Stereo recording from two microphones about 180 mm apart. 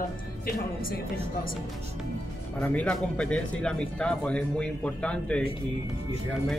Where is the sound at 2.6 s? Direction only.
5° left (ahead or behind).